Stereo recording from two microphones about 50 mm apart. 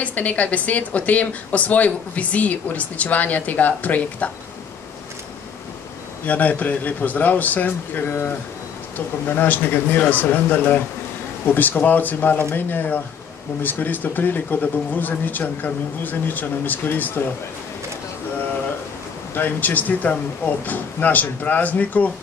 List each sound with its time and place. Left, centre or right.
0.0 s speech: left
6.2 s speech: left
19.3 s speech: left